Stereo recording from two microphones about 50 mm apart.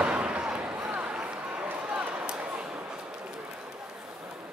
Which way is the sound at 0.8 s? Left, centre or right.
Right.